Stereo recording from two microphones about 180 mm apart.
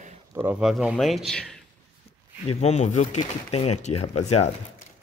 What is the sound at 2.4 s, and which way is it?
Speech, 40° left (ahead or behind).